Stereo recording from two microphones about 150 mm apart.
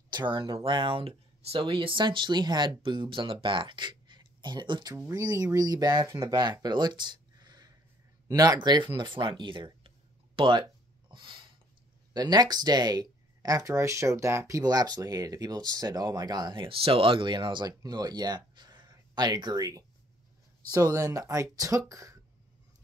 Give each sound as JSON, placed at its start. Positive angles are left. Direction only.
{"t": 0.1, "sound": "speech", "side_deg": -30}
{"t": 4.9, "sound": "speech", "side_deg": -20}
{"t": 11.1, "sound": "a sound", "side_deg": -35}
{"t": 12.1, "sound": "speech", "side_deg": -25}